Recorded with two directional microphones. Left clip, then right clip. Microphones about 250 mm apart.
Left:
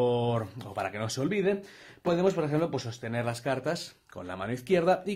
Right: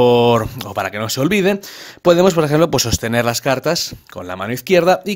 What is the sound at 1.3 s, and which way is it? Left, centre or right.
Speech, right.